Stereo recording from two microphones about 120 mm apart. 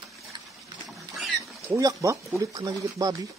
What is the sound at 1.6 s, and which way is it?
Speech, 25° right (ahead or behind).